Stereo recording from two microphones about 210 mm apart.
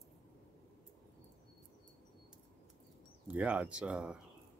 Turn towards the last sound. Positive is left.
turn(degrees=-5)  # may be behind; listen again after turning